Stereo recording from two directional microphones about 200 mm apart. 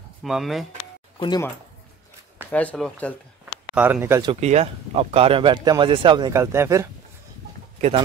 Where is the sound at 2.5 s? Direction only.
5° left (ahead or behind).